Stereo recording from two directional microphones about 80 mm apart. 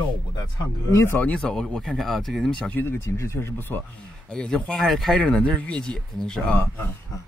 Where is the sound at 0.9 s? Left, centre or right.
Left.